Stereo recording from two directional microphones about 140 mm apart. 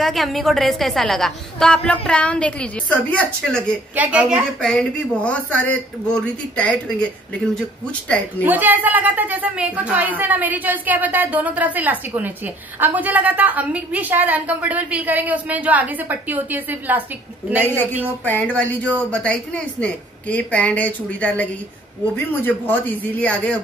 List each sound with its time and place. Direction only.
0.0 s a woman's voice: centre (ahead or behind)
3.9 s a woman's voice: 10° right (ahead or behind)
4.4 s speech: 5° left (ahead or behind)
8.4 s a woman's voice: 15° right (ahead or behind)
18.2 s speech: 10° left (ahead or behind)